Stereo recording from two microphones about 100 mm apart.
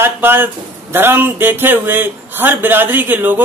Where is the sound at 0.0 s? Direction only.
20° right (ahead or behind).